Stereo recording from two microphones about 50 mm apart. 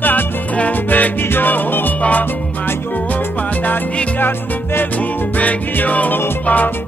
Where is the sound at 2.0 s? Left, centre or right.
Left.